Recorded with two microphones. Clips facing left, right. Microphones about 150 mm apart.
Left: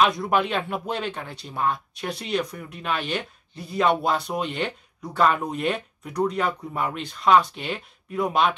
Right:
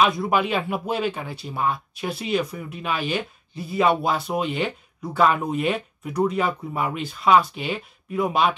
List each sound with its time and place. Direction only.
0.0 s speech: 5° right (ahead or behind)